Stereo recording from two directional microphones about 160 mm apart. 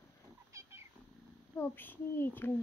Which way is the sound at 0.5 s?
20° right (ahead or behind).